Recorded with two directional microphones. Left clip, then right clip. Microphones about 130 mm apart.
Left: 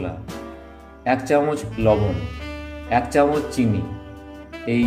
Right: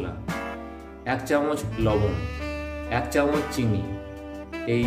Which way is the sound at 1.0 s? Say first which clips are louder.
Left 5 dB; 55° left (ahead or behind).